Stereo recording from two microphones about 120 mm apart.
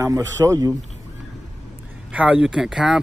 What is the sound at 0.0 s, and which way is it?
Speech, 25° right (ahead or behind).